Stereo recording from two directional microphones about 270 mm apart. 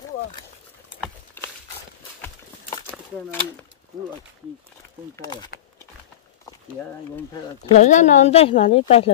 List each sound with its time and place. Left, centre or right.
1.0 s horse: centre
2.2 s a sound: centre
5.1 s speech: centre
7.3 s speech: left